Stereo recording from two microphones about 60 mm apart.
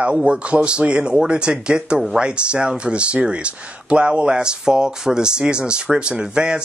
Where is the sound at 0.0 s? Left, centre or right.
Centre.